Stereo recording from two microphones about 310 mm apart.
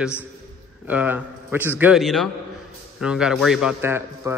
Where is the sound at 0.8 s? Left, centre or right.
Centre.